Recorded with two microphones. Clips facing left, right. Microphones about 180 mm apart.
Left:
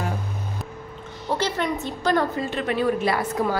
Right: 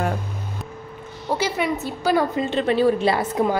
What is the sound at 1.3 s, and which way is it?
Speech, 10° right (ahead or behind).